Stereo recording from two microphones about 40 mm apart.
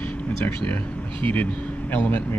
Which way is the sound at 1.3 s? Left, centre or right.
Left.